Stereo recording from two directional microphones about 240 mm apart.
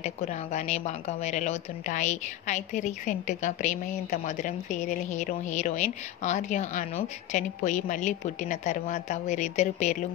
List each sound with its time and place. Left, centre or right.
0.0 s a woman's voice: left